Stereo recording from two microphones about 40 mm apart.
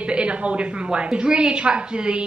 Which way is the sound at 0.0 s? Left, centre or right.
Right.